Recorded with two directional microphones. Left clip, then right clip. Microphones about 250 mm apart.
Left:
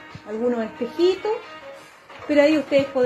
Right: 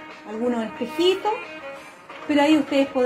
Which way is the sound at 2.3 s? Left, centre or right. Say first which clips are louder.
Left 2 dB; centre.